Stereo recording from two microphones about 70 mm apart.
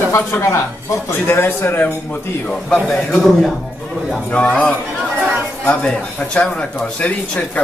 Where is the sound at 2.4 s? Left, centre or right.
Centre.